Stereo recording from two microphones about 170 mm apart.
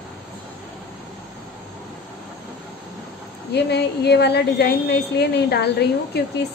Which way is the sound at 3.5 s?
75° left (ahead or behind).